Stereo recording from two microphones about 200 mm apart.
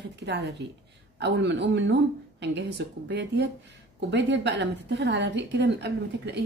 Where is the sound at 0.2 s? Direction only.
60° right (ahead or behind).